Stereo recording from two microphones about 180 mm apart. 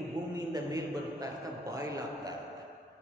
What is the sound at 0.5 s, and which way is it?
A man's voice, 20° right (ahead or behind).